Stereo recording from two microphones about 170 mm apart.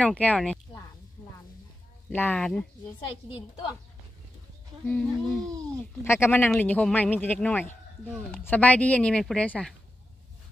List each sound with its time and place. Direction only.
0.0 s speech: 10° left (ahead or behind)
2.0 s speech: 10° left (ahead or behind)
3.3 s a woman's voice: 30° left (ahead or behind)
4.8 s speech: 5° left (ahead or behind)